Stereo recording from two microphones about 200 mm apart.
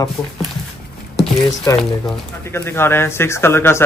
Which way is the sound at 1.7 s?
15° left (ahead or behind).